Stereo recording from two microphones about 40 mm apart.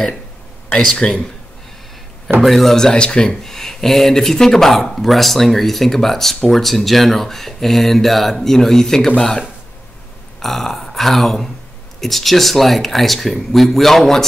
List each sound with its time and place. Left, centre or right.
0.7 s speech: left
2.4 s speech: centre; by 3.3 s left
3.4 s speech: centre
10.4 s burping: centre
12.0 s speech: centre